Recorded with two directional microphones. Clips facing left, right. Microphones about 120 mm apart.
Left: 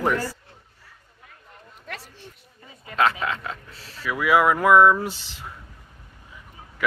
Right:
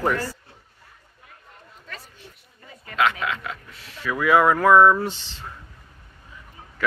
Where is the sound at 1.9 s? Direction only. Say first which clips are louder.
Left 4 dB; 70° left (ahead or behind).